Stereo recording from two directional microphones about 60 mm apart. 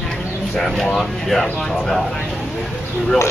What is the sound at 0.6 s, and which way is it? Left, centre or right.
Speech, centre.